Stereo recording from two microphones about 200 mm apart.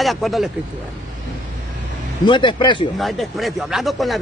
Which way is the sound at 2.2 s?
25° left (ahead or behind).